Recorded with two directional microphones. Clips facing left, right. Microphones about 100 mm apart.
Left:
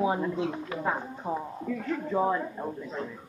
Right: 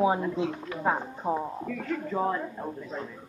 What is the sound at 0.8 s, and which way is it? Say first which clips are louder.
Speech: right 5 dB; 20° right (ahead or behind).